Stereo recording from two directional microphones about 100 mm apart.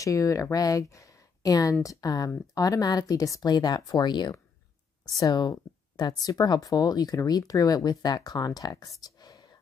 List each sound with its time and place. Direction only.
0.0 s speech: 35° left (ahead or behind)